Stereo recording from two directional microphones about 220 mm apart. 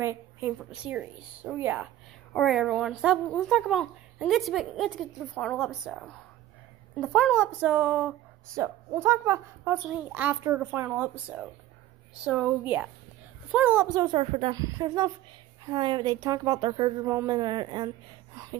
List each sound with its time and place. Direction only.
0.0 s a woman's voice: 10° right (ahead or behind)